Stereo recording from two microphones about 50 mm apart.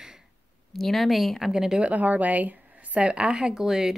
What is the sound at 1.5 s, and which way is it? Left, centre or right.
Speech, centre.